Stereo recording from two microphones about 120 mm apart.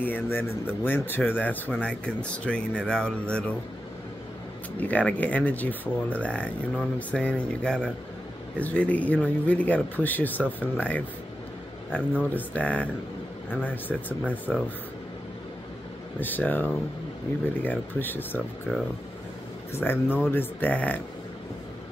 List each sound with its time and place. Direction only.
0.0 s speech: 15° left (ahead or behind)
4.7 s speech: 10° left (ahead or behind)
12.1 s speech: 15° left (ahead or behind)
16.2 s speech: 15° left (ahead or behind)
19.7 s speech: 15° left (ahead or behind)